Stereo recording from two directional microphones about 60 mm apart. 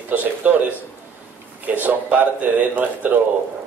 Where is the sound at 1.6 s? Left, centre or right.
Right.